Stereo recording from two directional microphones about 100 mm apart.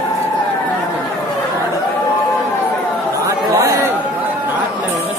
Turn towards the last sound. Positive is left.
turn(degrees=-30)  # may be behind; listen again after turning